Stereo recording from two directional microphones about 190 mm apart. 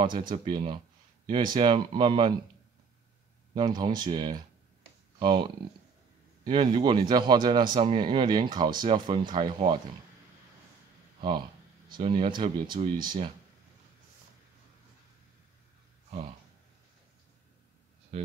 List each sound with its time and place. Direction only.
0.5 s a man's voice: 25° right (ahead or behind)
3.5 s a man's voice: 20° right (ahead or behind)
11.1 s a man's voice: 25° right (ahead or behind)
16.1 s speech: 30° right (ahead or behind)